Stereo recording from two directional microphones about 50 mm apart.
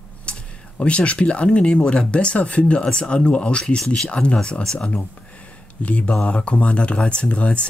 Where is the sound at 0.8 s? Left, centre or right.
Left.